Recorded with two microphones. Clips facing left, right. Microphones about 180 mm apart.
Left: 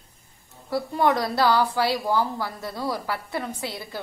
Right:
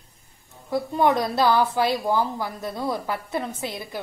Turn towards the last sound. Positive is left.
turn(degrees=-20)  # may be behind; listen again after turning